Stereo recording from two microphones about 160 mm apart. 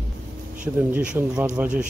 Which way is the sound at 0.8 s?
10° right (ahead or behind).